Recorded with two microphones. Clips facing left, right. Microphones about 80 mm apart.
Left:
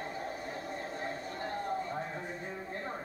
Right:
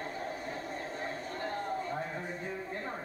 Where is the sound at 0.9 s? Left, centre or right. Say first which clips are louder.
Even; centre.